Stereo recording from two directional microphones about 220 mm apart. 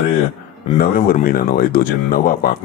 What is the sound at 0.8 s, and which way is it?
Speech, 40° left (ahead or behind).